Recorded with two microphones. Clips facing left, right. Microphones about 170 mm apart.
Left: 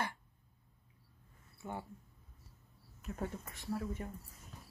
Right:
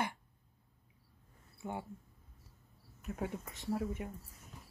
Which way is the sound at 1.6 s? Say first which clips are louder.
Right 2 dB; 15° right (ahead or behind).